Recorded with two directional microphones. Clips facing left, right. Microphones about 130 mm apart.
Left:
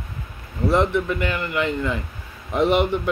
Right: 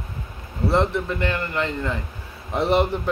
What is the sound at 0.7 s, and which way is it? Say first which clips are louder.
A man's voice: left 2 dB; 35° right (ahead or behind).